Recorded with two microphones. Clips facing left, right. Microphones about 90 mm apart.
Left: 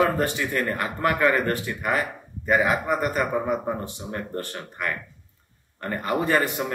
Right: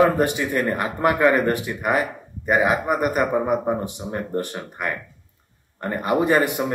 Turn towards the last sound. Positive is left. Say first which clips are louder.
# right 4 dB
turn(degrees=-15)  # may be behind; listen again after turning